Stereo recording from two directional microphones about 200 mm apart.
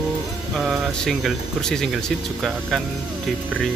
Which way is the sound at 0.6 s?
Centre (ahead or behind).